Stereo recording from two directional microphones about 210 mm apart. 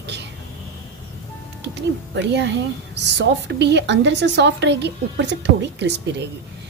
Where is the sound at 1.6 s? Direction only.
55° right (ahead or behind).